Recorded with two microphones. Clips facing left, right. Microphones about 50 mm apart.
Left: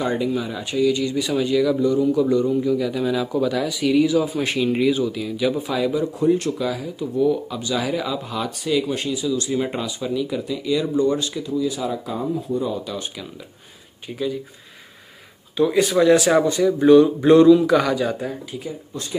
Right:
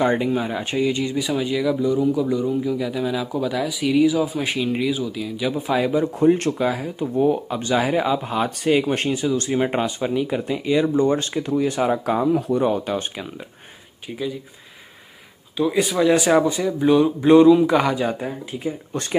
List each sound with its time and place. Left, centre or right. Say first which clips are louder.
0.0 s speech: right 3 dB; right
1.2 s speech: left 4 dB; centre
5.6 s speech: right 2 dB; right
12.8 s speech: right 4 dB; right
15.5 s speech: left 2 dB; centre
17.7 s speech: even; right